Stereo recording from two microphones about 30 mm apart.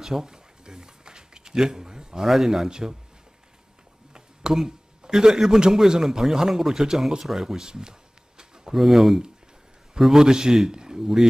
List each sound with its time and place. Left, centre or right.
0.0 s a sound: centre
2.2 s a man's voice: centre
4.1 s a sound: right
5.7 s speech: centre
8.7 s a man's voice: centre
10.2 s a man's voice: right
11.0 s speech: centre